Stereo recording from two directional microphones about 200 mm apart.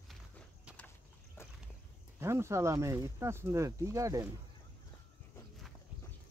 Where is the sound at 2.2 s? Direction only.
15° right (ahead or behind).